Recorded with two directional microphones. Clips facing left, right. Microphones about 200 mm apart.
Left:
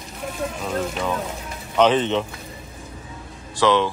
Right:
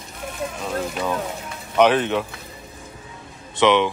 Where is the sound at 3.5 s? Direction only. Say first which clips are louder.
Right 1 dB; 20° right (ahead or behind).